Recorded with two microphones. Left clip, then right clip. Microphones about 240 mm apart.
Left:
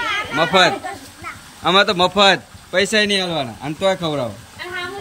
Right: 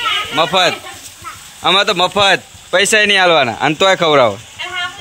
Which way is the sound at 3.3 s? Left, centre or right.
Right.